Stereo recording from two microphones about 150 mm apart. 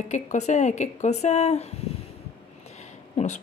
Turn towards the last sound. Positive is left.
turn(degrees=50)  # may be behind; listen again after turning